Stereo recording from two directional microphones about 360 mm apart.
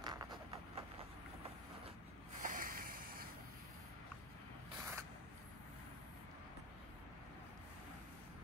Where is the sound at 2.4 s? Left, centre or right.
Right.